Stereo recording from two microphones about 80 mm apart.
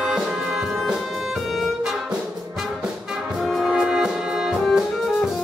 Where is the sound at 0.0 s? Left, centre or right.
Centre.